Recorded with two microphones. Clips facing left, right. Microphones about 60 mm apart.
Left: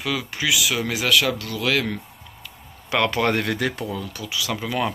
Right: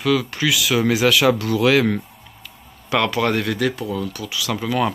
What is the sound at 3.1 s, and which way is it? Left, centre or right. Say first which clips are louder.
Speech: right 1 dB; left.